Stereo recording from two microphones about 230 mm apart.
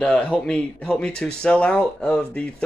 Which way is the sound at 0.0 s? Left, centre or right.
Centre.